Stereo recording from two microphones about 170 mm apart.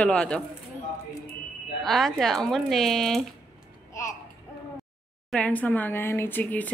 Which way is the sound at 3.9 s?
20° left (ahead or behind).